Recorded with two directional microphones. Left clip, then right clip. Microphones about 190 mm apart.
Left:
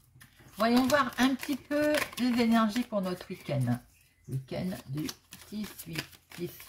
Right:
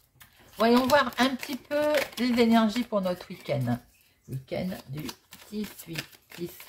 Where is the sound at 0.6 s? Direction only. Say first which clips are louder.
Right 4 dB; 25° right (ahead or behind).